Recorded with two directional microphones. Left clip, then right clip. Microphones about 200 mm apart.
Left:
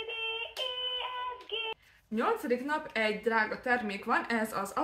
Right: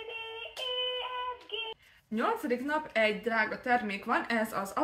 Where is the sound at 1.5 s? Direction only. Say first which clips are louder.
Left 3 dB; 30° left (ahead or behind).